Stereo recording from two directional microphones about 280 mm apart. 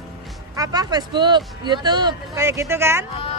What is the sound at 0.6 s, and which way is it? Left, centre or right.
Speech, centre.